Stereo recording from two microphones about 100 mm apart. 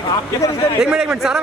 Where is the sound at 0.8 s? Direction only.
10° right (ahead or behind).